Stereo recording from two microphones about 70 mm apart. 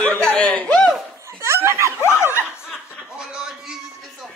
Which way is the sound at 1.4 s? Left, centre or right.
Right.